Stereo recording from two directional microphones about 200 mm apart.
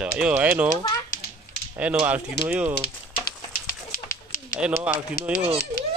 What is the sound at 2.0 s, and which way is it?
Speech, 10° right (ahead or behind).